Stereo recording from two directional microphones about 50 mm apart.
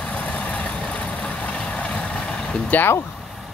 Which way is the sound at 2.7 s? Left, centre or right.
Left.